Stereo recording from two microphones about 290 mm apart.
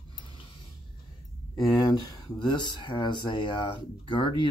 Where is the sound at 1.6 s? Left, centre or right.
Centre.